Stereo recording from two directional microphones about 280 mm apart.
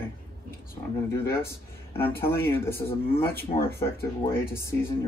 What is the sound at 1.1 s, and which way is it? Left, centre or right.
Speech, centre.